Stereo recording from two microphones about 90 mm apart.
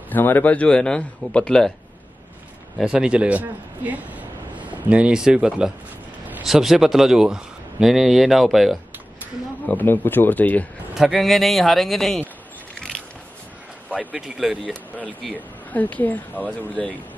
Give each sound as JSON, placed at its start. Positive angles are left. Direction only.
{"t": 0.1, "sound": "speech", "side_deg": 20}
{"t": 2.8, "sound": "speech", "side_deg": -10}
{"t": 9.7, "sound": "a man's voice", "side_deg": 20}
{"t": 11.0, "sound": "speech", "side_deg": 0}
{"t": 12.7, "sound": "biting", "side_deg": 5}
{"t": 13.8, "sound": "speech", "side_deg": -15}
{"t": 15.3, "sound": "speech", "side_deg": 20}